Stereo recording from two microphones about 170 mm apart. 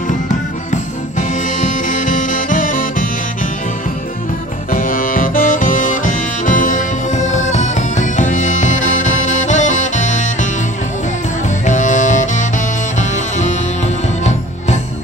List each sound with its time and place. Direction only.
1.6 s music: 50° left (ahead or behind)
4.7 s music: 55° left (ahead or behind)
11.6 s music: 45° left (ahead or behind)